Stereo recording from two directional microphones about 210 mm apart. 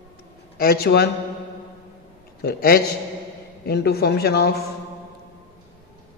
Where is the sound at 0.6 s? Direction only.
45° left (ahead or behind).